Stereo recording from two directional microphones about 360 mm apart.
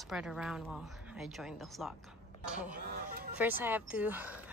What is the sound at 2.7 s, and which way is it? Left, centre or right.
Music, right.